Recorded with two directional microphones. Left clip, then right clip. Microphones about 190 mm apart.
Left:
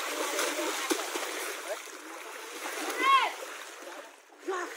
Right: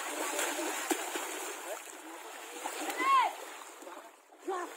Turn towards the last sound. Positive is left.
turn(degrees=-50)  # may be behind; listen again after turning